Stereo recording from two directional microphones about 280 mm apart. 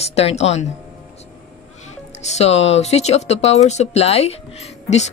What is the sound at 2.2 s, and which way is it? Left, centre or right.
Speech, left.